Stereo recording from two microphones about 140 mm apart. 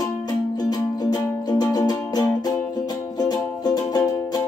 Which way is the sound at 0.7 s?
30° left (ahead or behind).